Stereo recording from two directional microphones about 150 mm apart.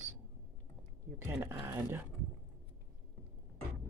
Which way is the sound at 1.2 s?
15° right (ahead or behind).